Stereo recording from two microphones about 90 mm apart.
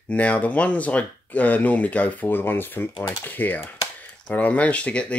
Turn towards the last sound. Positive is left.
turn(degrees=15)  # may be behind; listen again after turning